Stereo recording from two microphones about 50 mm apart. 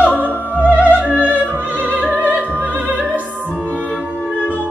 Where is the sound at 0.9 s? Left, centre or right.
Right.